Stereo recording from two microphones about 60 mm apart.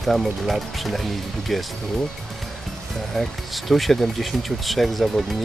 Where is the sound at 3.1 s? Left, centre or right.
Centre.